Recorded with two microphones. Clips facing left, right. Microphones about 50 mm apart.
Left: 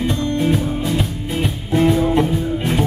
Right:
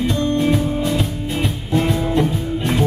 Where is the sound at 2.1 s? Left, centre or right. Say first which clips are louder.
Left 1 dB; centre.